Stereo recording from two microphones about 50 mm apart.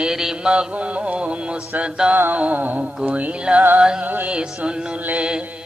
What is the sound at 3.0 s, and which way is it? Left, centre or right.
Mantra, right.